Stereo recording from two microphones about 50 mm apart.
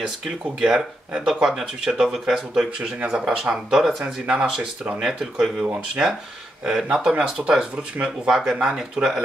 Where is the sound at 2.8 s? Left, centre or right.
Centre.